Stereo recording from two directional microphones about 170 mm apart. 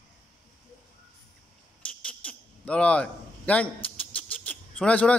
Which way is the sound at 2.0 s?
5° left (ahead or behind).